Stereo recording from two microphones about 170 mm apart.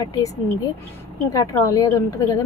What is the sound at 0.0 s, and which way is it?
Speech, 20° left (ahead or behind).